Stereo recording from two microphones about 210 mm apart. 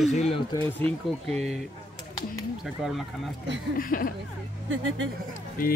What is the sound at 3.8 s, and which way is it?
Speech, 40° left (ahead or behind).